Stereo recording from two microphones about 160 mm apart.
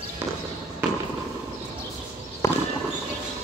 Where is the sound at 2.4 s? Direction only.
20° left (ahead or behind).